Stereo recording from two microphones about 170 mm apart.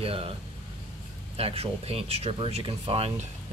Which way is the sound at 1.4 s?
35° right (ahead or behind).